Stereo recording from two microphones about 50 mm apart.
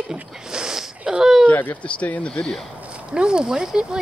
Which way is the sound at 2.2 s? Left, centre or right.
Left.